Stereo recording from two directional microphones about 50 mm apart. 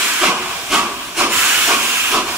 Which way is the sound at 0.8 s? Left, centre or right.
Right.